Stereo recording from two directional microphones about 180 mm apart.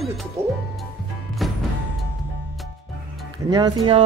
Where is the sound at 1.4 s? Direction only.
Centre (ahead or behind).